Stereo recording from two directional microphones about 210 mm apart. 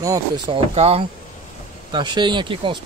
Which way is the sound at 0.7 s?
30° right (ahead or behind).